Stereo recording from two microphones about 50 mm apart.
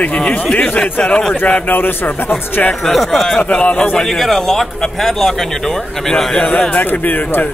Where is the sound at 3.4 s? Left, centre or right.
Left.